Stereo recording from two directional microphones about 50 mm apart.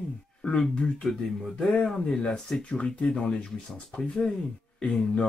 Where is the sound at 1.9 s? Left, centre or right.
Centre.